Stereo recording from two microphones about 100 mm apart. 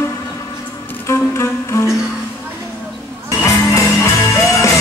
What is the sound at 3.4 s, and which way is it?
Music, 30° left (ahead or behind).